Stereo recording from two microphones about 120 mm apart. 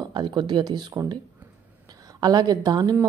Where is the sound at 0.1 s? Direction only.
40° right (ahead or behind).